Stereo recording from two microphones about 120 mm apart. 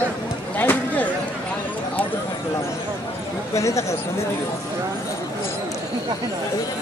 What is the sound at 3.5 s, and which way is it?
Speech, 25° left (ahead or behind).